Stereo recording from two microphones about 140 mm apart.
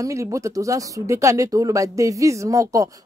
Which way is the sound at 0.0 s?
20° right (ahead or behind).